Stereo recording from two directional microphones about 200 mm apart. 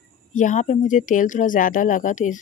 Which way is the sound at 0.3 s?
40° left (ahead or behind).